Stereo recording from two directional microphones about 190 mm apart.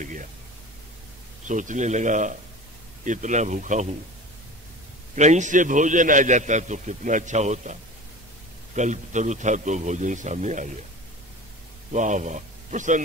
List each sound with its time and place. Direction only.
0.0 s speech: 45° right (ahead or behind)
1.5 s a man's voice: 40° right (ahead or behind)
5.1 s a man's voice: 40° right (ahead or behind)
8.7 s a man's voice: 40° right (ahead or behind)
11.9 s speech: 40° right (ahead or behind)